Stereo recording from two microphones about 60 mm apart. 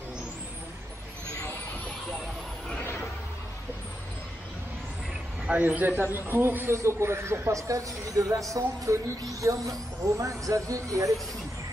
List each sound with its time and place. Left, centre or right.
2.8 s a sound: left
5.5 s a man's voice: right
7.6 s speech: right